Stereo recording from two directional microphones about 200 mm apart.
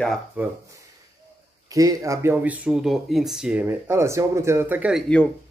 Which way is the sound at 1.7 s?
15° right (ahead or behind).